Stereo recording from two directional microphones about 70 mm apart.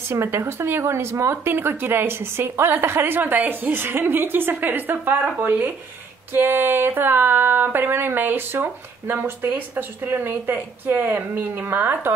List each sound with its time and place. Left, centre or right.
0.1 s speech: right